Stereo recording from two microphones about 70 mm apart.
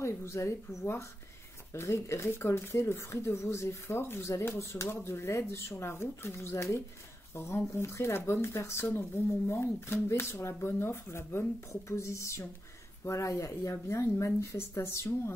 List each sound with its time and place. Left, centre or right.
0.0 s speech: left